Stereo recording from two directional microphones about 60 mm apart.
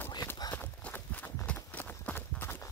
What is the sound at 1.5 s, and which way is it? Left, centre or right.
Clip-clop, left.